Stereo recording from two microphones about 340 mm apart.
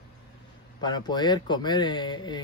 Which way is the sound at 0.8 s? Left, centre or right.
Centre.